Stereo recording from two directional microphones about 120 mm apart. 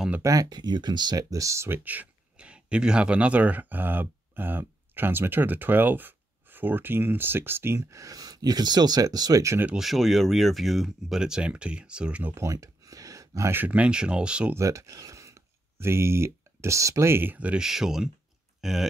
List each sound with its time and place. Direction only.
0.2 s speech: 30° right (ahead or behind)
9.7 s speech: centre (ahead or behind)
12.4 s speech: 25° right (ahead or behind); by 14.5 s 10° right (ahead or behind)
14.5 s speech: 25° right (ahead or behind); by 18.9 s centre (ahead or behind)